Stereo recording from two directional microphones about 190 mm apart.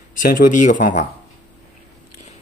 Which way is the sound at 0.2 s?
45° left (ahead or behind).